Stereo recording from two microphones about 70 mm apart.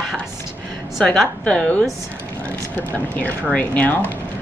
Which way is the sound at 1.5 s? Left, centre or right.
Centre.